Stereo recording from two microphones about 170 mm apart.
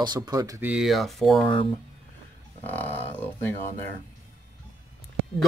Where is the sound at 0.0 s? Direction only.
25° right (ahead or behind).